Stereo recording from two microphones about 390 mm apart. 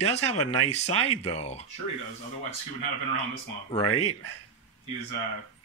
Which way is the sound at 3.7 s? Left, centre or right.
Centre.